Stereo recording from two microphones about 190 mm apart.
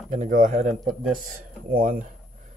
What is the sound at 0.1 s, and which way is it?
Speech, 45° right (ahead or behind).